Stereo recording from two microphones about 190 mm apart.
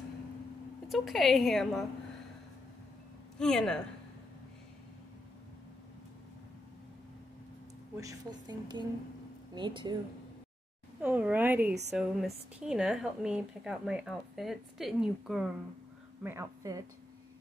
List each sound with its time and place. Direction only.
0.8 s speech: centre (ahead or behind)
3.3 s speech: 5° left (ahead or behind)
8.0 s a woman's voice: 20° right (ahead or behind)
11.0 s speech: 10° right (ahead or behind)
16.2 s speech: 15° right (ahead or behind)